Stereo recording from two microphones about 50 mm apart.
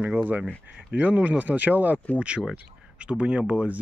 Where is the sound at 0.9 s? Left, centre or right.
Right.